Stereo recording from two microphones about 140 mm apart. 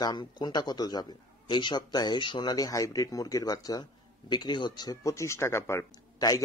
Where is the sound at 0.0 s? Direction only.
30° left (ahead or behind).